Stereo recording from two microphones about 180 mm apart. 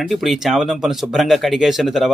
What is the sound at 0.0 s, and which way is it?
Speech, centre (ahead or behind).